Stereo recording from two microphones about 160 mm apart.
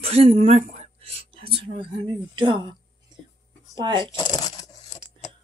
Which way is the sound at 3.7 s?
30° right (ahead or behind).